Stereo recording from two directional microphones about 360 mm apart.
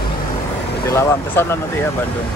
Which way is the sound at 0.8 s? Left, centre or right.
Centre.